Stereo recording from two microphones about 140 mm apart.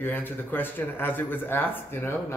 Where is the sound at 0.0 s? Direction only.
15° left (ahead or behind).